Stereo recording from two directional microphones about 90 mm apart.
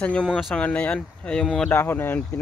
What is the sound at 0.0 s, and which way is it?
Speech, 15° left (ahead or behind).